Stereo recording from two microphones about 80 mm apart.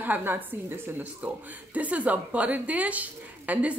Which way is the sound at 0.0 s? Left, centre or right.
Right.